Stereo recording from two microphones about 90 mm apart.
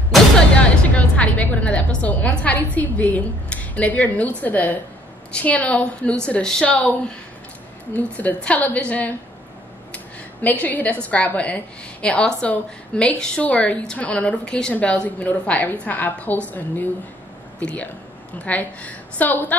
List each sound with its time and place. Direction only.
0.6 s a woman's voice: 15° left (ahead or behind)
9.9 s a sound: 15° left (ahead or behind)
11.1 s a woman's voice: 15° left (ahead or behind)